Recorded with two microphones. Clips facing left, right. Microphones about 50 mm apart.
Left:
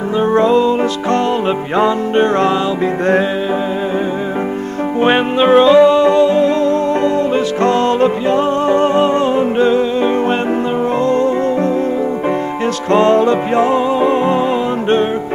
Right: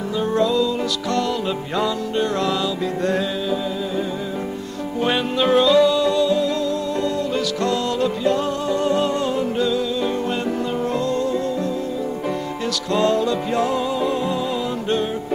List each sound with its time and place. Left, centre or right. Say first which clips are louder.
0.2 s music: left 7 dB; left
5.0 s music: left 7 dB; left
12.9 s music: left 8 dB; left